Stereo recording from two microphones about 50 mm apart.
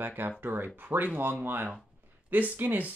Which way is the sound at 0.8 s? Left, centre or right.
Right.